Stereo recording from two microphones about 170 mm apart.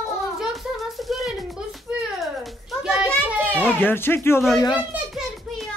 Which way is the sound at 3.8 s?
10° left (ahead or behind).